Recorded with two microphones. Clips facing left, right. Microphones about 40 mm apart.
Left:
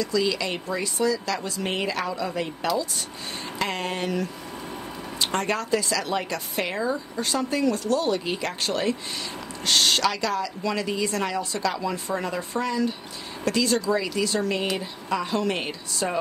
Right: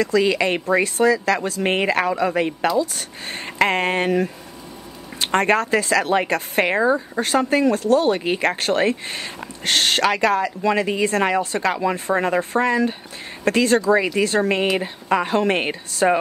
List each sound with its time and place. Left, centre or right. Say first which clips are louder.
0.0 s speech: right 7 dB; right